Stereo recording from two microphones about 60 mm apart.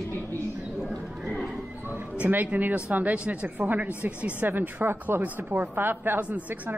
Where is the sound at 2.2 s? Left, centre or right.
Right.